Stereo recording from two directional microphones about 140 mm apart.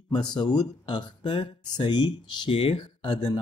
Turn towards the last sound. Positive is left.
turn(degrees=30)  # may be behind; listen again after turning